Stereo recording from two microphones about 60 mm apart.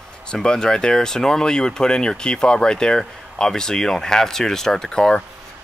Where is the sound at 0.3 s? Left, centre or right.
Centre.